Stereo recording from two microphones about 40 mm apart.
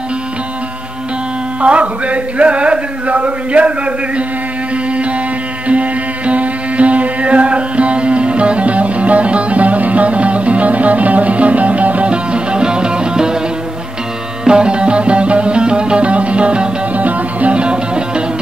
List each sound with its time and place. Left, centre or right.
1.6 s a sound: right
5.7 s music: right
14.4 s music: right
16.9 s music: right